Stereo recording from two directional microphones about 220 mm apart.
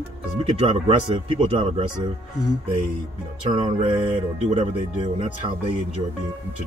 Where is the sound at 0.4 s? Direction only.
25° right (ahead or behind).